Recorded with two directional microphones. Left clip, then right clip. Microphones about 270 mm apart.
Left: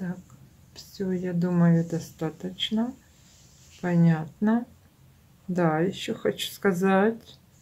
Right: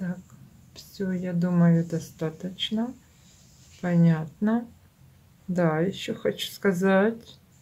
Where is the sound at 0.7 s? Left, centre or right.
Centre.